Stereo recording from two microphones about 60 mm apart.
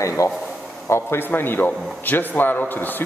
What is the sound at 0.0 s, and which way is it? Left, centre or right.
A man's voice, left.